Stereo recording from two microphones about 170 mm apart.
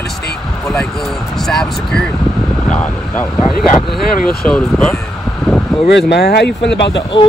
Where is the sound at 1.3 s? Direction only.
Centre (ahead or behind).